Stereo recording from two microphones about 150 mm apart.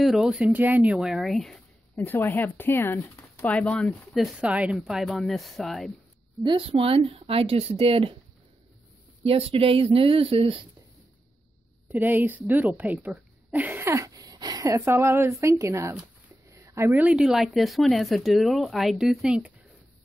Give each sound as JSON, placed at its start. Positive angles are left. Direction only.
{"t": 0.0, "sound": "speech", "side_deg": -5}
{"t": 2.0, "sound": "speech", "side_deg": 10}
{"t": 6.4, "sound": "speech", "side_deg": -35}
{"t": 9.2, "sound": "speech", "side_deg": -40}
{"t": 11.9, "sound": "speech", "side_deg": -10}